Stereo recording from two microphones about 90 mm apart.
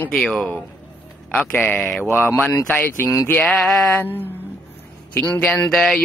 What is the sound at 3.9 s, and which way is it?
Speech, 20° left (ahead or behind).